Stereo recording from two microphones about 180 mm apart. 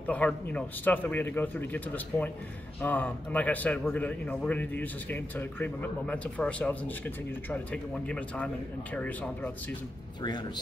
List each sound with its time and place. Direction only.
0.0 s a man's voice: 10° left (ahead or behind)
10.2 s speech: 25° left (ahead or behind)